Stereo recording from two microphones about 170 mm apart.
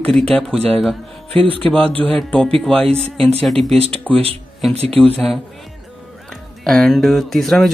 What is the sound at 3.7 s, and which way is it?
Speech, 35° right (ahead or behind).